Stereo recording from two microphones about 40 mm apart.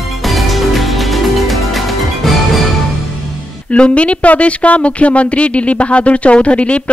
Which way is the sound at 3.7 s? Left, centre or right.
Left.